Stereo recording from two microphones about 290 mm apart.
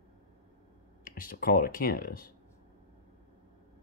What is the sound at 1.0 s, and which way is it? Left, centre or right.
Speech, left.